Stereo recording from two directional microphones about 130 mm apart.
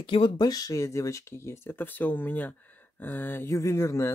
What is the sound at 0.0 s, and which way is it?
Speech, 40° left (ahead or behind).